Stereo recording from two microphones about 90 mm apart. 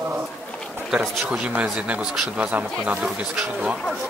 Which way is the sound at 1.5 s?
15° right (ahead or behind).